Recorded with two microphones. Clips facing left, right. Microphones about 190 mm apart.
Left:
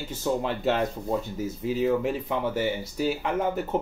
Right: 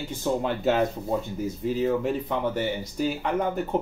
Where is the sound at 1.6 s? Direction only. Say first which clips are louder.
Even; 5° left (ahead or behind).